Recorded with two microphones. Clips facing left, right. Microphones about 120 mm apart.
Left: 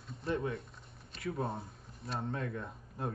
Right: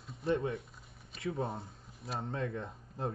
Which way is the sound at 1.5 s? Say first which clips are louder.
Left 1 dB; centre (ahead or behind).